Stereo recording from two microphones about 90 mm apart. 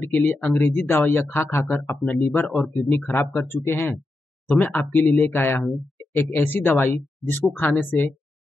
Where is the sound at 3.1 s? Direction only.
25° left (ahead or behind).